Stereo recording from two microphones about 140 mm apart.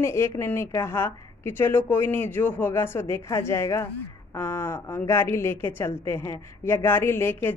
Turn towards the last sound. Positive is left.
turn(degrees=15)  # may be behind; listen again after turning